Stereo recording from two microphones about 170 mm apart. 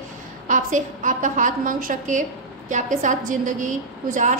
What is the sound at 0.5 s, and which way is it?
A woman's voice, 50° right (ahead or behind).